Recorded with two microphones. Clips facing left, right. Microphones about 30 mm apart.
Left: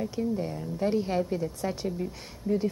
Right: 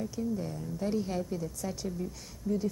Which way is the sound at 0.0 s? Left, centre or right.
Left.